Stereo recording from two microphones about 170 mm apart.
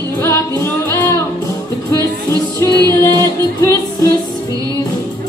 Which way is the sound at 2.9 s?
15° left (ahead or behind).